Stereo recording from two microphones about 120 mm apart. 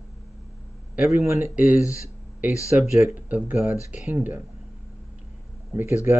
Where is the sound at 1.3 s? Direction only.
15° right (ahead or behind).